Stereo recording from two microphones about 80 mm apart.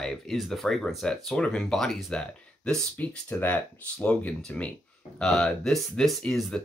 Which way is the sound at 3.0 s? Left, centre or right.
Centre.